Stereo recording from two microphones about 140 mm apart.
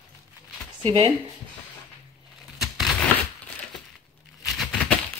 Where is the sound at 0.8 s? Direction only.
40° right (ahead or behind).